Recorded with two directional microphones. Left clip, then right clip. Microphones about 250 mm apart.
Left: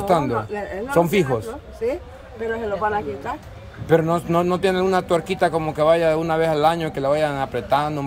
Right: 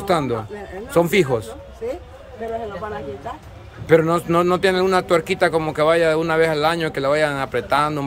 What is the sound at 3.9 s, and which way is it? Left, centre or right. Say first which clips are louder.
A man's voice: right 3 dB; centre.